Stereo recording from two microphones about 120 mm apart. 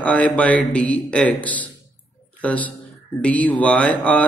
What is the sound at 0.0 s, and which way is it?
A woman's voice, 10° left (ahead or behind).